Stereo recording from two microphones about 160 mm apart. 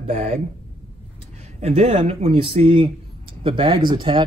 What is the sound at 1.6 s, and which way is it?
Speech, 40° right (ahead or behind).